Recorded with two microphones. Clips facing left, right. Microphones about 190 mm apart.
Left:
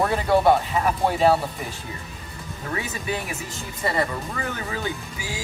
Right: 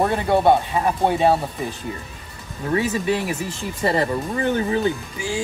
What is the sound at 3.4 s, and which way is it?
Speech, 30° right (ahead or behind).